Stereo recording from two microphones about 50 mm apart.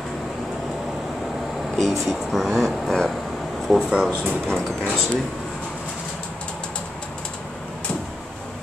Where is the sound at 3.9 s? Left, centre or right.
Centre.